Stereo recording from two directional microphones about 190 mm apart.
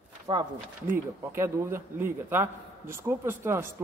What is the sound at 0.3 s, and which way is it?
Speech, 25° right (ahead or behind).